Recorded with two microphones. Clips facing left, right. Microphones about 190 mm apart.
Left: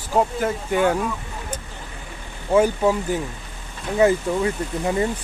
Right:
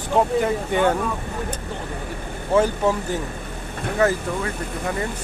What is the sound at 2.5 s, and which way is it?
Speech, 10° left (ahead or behind).